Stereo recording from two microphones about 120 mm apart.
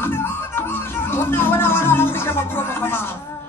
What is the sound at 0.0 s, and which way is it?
Music, 20° left (ahead or behind).